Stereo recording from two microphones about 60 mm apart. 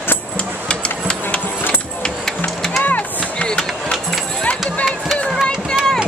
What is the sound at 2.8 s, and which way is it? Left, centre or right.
Chop, left.